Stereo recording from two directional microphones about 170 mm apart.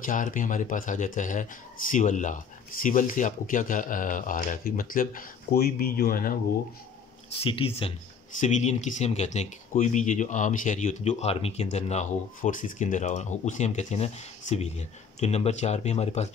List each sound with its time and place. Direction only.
0.0 s speech: 50° left (ahead or behind)
7.3 s speech: 30° left (ahead or behind)
8.4 s speech: 45° left (ahead or behind)